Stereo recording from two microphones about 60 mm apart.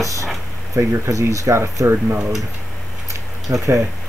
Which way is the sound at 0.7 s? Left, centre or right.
Right.